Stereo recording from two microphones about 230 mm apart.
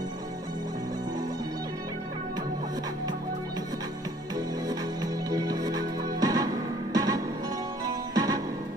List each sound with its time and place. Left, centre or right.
4.6 s music: centre